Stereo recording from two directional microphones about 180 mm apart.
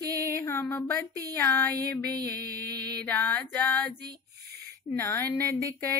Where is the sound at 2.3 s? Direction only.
60° right (ahead or behind).